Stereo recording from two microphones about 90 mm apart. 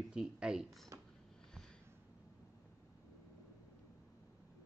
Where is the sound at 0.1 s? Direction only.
10° right (ahead or behind).